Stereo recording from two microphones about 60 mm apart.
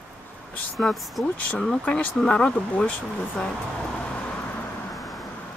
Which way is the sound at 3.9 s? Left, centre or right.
Left.